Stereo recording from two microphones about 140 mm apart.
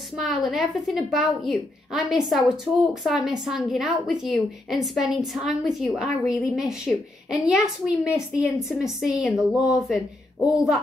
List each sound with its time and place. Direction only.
0.2 s a woman's voice: centre (ahead or behind)